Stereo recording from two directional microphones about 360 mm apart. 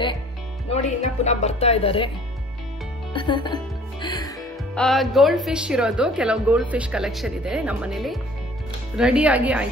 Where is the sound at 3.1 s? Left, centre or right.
Centre.